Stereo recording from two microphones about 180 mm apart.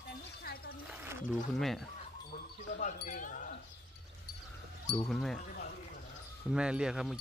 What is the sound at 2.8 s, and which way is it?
Wind chime, 45° left (ahead or behind).